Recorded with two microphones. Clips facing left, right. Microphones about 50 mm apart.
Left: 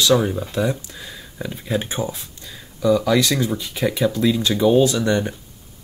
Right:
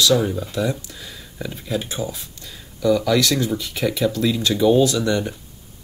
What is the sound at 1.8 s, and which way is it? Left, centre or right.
Speech, left.